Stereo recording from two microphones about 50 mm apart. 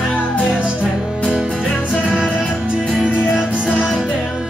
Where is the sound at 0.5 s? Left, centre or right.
Centre.